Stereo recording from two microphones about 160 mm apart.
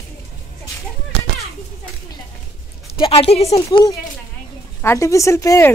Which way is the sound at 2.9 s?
35° left (ahead or behind).